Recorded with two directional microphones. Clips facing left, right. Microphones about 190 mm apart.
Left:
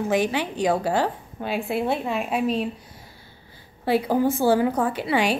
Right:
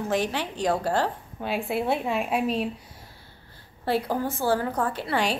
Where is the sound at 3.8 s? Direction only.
5° left (ahead or behind).